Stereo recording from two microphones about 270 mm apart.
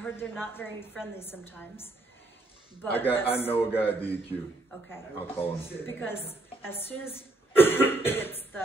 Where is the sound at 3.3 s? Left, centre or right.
Centre.